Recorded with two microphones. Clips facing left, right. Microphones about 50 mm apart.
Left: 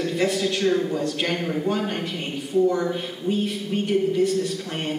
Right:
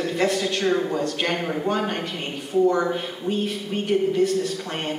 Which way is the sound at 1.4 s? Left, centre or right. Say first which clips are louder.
Even; centre.